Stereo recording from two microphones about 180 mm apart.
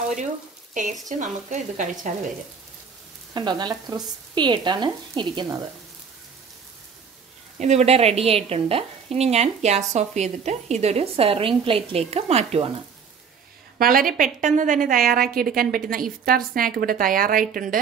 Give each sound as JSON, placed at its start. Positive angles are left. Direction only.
{"t": 1.0, "sound": "a woman's voice", "side_deg": -45}
{"t": 3.3, "sound": "speech", "side_deg": -25}
{"t": 7.5, "sound": "a woman's voice", "side_deg": -40}
{"t": 13.7, "sound": "a woman's voice", "side_deg": -55}